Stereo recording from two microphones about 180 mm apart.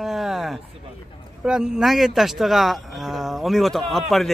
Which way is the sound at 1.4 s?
5° right (ahead or behind).